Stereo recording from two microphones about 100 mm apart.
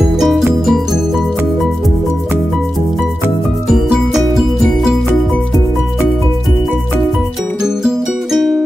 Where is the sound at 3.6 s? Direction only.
Centre (ahead or behind).